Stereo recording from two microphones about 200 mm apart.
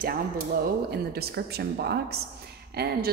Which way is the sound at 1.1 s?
55° right (ahead or behind).